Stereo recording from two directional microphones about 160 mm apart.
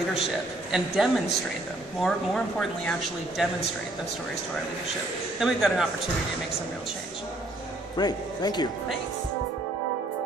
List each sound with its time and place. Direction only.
0.7 s speech: 5° right (ahead or behind)
5.4 s speech: 5° right (ahead or behind)
8.0 s speech: 25° left (ahead or behind)